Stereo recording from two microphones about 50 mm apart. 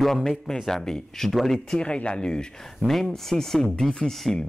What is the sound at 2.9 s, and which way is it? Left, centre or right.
Speech, centre.